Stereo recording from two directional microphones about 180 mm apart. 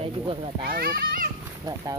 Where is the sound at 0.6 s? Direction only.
55° right (ahead or behind).